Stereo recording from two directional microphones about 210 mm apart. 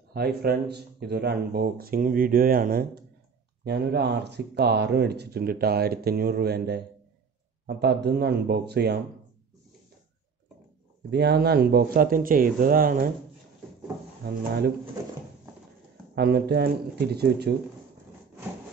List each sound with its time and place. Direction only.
0.1 s speech: 50° right (ahead or behind)
11.1 s speech: 50° right (ahead or behind)
14.2 s speech: 50° right (ahead or behind)
16.2 s speech: 50° right (ahead or behind)